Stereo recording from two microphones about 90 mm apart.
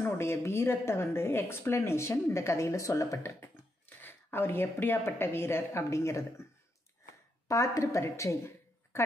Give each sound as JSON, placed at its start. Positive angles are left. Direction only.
{"t": 0.0, "sound": "a woman's voice", "side_deg": 30}
{"t": 7.4, "sound": "a woman's voice", "side_deg": 35}